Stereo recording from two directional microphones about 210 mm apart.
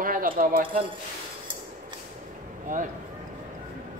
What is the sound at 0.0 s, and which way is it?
Speech, 40° right (ahead or behind).